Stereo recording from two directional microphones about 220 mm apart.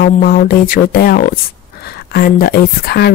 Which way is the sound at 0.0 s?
40° left (ahead or behind).